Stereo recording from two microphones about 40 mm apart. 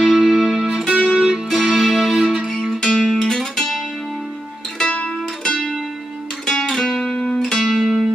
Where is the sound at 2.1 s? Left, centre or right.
Centre.